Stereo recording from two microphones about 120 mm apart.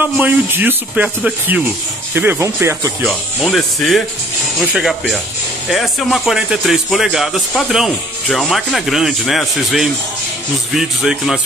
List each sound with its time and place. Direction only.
0.0 s speech: 15° right (ahead or behind)
3.4 s speech: centre (ahead or behind)